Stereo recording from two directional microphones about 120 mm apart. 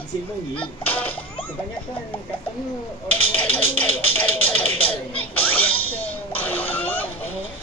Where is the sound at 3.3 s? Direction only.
15° left (ahead or behind).